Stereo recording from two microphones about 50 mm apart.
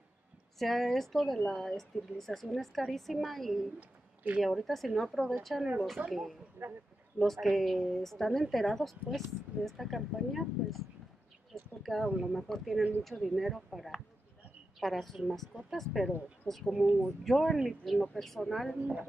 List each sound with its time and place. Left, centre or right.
0.6 s a woman's voice: centre
6.0 s speech: right
6.6 s speech: right
7.2 s a woman's voice: centre
11.8 s a woman's voice: centre
18.8 s speech: right